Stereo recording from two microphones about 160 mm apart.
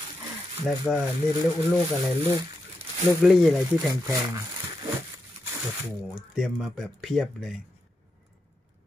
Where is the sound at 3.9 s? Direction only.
25° right (ahead or behind).